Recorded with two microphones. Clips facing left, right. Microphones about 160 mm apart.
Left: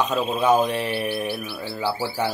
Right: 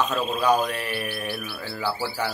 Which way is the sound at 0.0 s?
15° left (ahead or behind).